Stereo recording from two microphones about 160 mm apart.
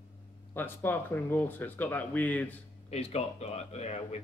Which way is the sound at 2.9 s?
40° left (ahead or behind).